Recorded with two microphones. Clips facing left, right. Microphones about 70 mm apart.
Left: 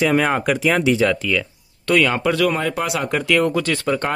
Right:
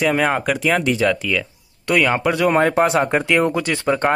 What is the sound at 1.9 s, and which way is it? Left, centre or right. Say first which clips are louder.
Speech: even; centre.